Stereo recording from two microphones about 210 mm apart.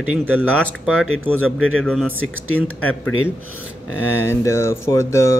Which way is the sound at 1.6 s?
75° left (ahead or behind).